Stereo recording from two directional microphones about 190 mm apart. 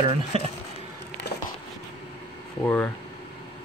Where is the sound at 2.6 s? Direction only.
10° left (ahead or behind).